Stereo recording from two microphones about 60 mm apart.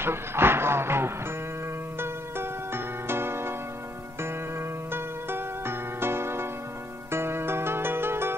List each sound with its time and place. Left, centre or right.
0.0 s music: right